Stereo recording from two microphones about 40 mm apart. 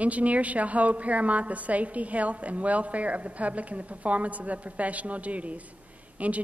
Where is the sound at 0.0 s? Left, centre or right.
Right.